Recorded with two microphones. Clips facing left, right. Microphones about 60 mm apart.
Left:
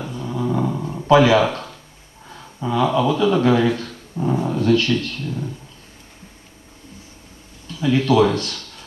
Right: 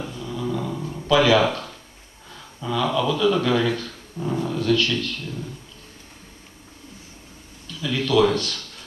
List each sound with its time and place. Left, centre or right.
0.1 s dog: left
2.2 s speech: left
7.6 s speech: left